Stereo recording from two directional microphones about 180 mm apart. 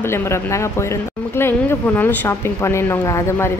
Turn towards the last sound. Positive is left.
turn(degrees=15)  # may be behind; listen again after turning